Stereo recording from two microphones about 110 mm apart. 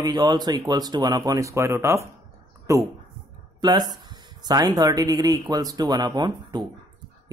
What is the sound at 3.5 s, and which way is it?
Speech, 40° right (ahead or behind).